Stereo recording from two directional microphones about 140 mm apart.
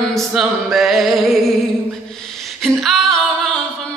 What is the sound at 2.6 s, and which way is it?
Female singing, 5° left (ahead or behind).